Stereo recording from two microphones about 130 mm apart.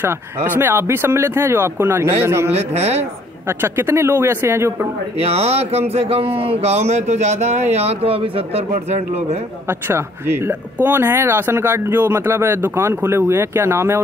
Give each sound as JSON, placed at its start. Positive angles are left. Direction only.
{"t": 0.0, "sound": "speech", "side_deg": -15}
{"t": 2.5, "sound": "speech", "side_deg": -55}
{"t": 3.0, "sound": "speech", "side_deg": -15}
{"t": 5.2, "sound": "speech", "side_deg": -55}
{"t": 9.7, "sound": "speech", "side_deg": -20}